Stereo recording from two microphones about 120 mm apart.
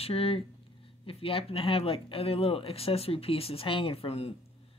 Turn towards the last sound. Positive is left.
turn(degrees=55)  # may be behind; listen again after turning